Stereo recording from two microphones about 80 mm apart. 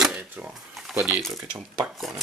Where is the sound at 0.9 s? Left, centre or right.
Centre.